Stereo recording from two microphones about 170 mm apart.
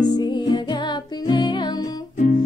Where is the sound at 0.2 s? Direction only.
25° left (ahead or behind).